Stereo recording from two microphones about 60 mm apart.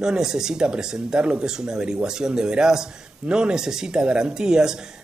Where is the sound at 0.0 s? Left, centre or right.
Centre.